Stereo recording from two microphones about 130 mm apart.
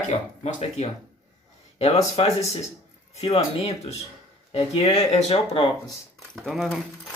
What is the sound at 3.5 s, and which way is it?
Speech, 55° left (ahead or behind).